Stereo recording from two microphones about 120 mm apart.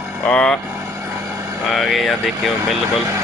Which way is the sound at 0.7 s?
20° right (ahead or behind).